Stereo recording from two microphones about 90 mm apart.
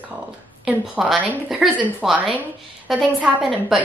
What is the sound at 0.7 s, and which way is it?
A woman's voice, 5° right (ahead or behind).